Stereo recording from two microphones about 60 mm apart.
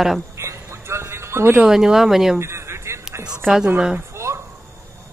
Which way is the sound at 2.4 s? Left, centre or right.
Right.